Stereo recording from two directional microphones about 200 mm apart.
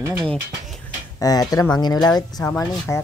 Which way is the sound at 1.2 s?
20° left (ahead or behind).